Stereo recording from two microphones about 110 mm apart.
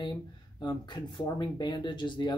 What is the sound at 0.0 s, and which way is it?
Speech, 45° left (ahead or behind).